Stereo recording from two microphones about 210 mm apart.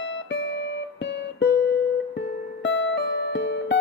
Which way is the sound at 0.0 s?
60° left (ahead or behind).